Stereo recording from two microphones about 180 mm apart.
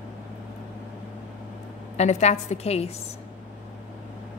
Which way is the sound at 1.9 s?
40° left (ahead or behind).